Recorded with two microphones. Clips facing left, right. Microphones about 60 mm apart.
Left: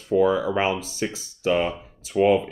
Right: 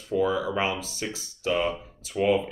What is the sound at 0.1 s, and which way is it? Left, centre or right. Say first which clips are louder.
Speech: left 5 dB; left.